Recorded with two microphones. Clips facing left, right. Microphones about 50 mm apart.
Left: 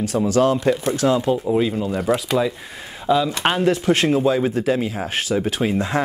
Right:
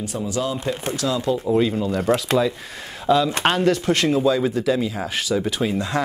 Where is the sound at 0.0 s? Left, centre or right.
Left.